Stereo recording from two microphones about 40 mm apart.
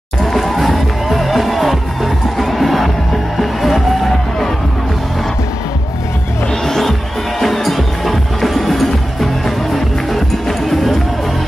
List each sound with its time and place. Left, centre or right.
0.2 s music: centre
6.6 s music: centre